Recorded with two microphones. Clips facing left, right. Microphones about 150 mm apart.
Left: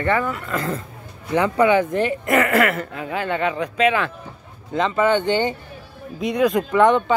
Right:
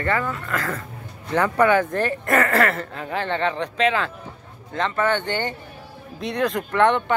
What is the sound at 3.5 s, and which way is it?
Speech, 30° right (ahead or behind).